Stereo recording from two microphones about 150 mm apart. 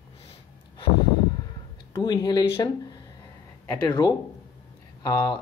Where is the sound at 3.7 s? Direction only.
30° left (ahead or behind).